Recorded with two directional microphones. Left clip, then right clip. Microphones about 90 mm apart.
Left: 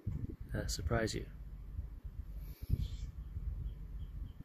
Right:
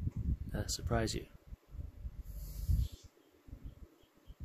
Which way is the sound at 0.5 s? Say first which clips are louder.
Right 1 dB; 20° right (ahead or behind).